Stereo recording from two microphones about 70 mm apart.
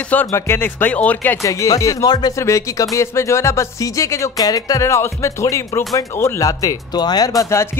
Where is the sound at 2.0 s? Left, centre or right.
Left.